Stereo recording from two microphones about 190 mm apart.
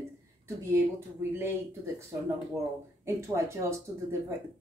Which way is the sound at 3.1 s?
15° right (ahead or behind).